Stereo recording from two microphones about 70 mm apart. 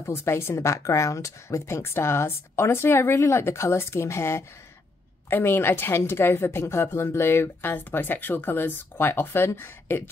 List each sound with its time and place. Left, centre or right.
0.0 s a woman's voice: left